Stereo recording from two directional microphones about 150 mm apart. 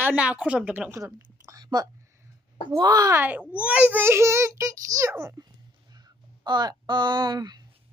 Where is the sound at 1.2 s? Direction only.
25° right (ahead or behind).